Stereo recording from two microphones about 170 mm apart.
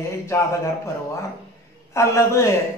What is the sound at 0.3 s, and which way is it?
Speech, 15° left (ahead or behind).